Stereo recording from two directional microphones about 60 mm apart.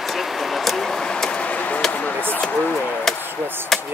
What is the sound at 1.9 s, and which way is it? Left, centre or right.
Speech, left.